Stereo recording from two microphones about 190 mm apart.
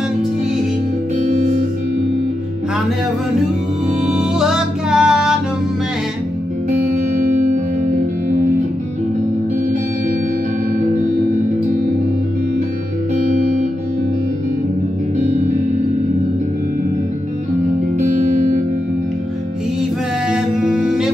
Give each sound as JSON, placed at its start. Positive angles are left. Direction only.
{"t": 4.4, "sound": "music", "side_deg": -5}
{"t": 11.3, "sound": "music", "side_deg": -40}
{"t": 17.9, "sound": "music", "side_deg": -40}
{"t": 20.2, "sound": "music", "side_deg": -5}